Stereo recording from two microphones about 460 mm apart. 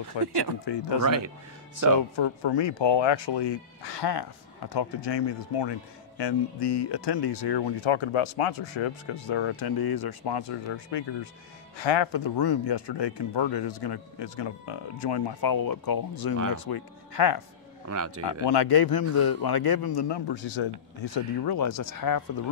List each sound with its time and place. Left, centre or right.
0.2 s speech: left
1.0 s speech: right
2.1 s speech: left
17.8 s speech: right
18.2 s speech: left
21.5 s speech: left